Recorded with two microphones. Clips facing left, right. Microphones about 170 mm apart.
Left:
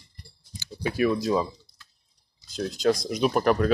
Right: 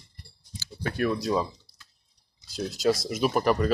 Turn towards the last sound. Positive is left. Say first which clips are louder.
# left 2 dB
turn(degrees=0)  # may be behind; listen again after turning